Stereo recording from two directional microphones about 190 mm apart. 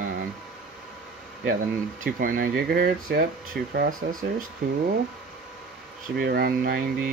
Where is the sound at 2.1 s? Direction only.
45° right (ahead or behind).